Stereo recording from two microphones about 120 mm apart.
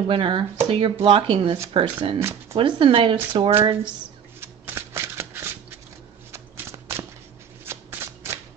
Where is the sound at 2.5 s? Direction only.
45° right (ahead or behind).